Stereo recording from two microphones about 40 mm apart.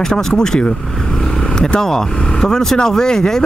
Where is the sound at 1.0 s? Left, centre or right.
Centre.